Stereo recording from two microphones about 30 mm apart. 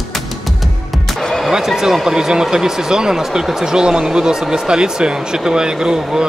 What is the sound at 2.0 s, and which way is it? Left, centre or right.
Speech, centre.